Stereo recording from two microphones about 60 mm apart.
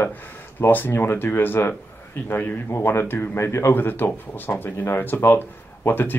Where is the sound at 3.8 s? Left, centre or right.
Left.